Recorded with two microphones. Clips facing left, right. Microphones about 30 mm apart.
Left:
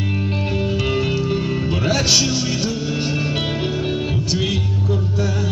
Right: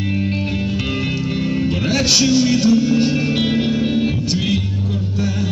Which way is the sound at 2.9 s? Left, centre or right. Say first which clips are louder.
Right 5 dB; centre.